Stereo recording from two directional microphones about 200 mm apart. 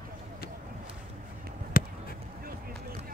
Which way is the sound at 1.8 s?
45° left (ahead or behind).